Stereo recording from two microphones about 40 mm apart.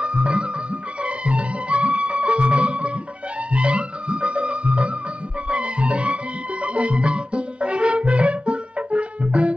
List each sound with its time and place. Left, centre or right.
0.0 s music: right